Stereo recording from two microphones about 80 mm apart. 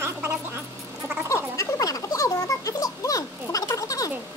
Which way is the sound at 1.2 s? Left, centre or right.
Left.